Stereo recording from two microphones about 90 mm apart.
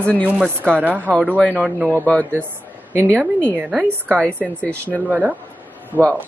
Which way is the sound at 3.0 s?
20° right (ahead or behind).